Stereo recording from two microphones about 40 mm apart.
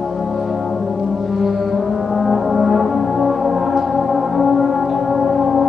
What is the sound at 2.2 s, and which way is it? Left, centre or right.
Brass instrument, centre.